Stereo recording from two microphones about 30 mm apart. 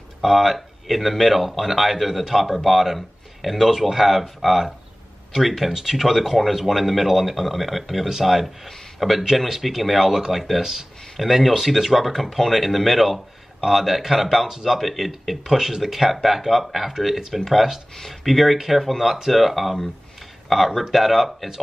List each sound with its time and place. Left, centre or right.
0.2 s speech: centre
8.1 s speech: centre
8.6 s speech: centre